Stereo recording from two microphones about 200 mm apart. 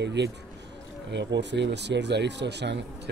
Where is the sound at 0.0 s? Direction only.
60° right (ahead or behind).